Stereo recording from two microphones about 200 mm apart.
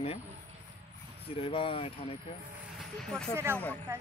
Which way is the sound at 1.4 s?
30° left (ahead or behind).